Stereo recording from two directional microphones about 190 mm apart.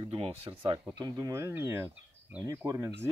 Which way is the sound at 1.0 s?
20° right (ahead or behind).